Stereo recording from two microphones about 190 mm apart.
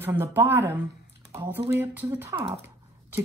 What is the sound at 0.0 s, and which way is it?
Speech, 10° right (ahead or behind).